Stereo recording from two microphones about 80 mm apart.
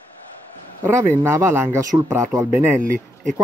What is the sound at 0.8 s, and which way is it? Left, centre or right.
Speech, right.